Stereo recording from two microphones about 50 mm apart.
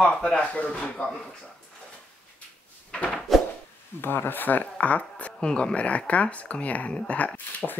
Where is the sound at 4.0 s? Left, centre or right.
Left.